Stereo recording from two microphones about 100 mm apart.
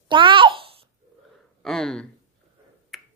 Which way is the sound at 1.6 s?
5° left (ahead or behind).